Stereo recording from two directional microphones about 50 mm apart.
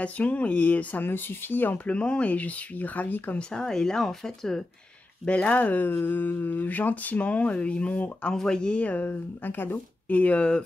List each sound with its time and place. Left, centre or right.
0.0 s speech: left
1.0 s speech: left
1.9 s speech: left
3.3 s speech: centre
5.2 s speech: left
8.8 s speech: left